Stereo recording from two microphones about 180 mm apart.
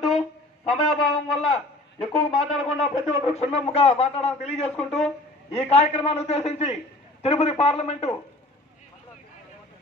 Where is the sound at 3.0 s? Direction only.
40° left (ahead or behind).